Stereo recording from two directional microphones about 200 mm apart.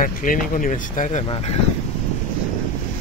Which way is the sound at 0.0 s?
45° left (ahead or behind).